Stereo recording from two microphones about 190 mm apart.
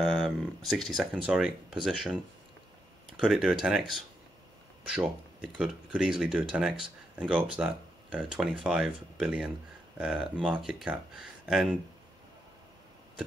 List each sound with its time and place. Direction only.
0.0 s speech: centre (ahead or behind)
3.2 s speech: centre (ahead or behind)